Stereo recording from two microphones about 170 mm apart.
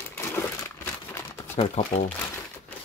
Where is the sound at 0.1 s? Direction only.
15° left (ahead or behind).